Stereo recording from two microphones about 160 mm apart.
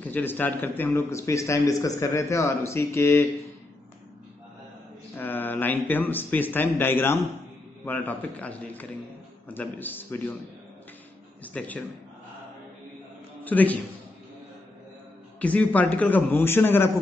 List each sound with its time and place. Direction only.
0.0 s a man's voice: 10° left (ahead or behind)
5.1 s a man's voice: 10° left (ahead or behind)
11.4 s a man's voice: 10° left (ahead or behind)
13.4 s a man's voice: 10° left (ahead or behind)
15.3 s a man's voice: 10° left (ahead or behind)